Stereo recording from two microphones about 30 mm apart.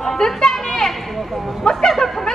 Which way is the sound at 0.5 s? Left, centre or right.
Centre.